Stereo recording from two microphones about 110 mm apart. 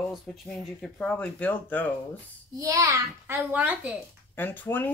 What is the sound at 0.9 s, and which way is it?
Speech, 10° left (ahead or behind).